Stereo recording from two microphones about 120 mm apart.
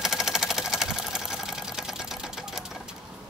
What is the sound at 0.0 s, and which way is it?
Sewing machine, 5° right (ahead or behind).